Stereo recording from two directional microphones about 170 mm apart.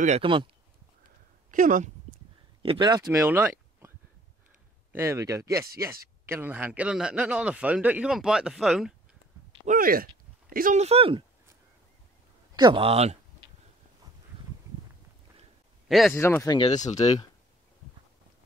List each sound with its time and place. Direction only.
0.2 s speech: 30° right (ahead or behind)
1.5 s speech: 50° right (ahead or behind)
2.6 s speech: 30° right (ahead or behind); by 3.9 s 15° right (ahead or behind)
4.9 s speech: 20° right (ahead or behind); by 8.9 s centre (ahead or behind)
9.7 s speech: 55° right (ahead or behind); by 11.2 s 35° right (ahead or behind)
12.5 s a sound: 25° right (ahead or behind)
15.9 s speech: centre (ahead or behind)
16.2 s speech: 15° left (ahead or behind)
16.7 s speech: 45° left (ahead or behind)